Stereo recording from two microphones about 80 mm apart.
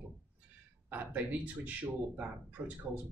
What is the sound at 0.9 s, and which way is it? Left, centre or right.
Speech, centre.